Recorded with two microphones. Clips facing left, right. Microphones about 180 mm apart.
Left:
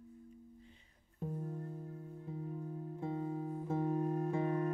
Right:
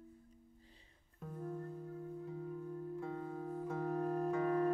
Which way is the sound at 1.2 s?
30° left (ahead or behind).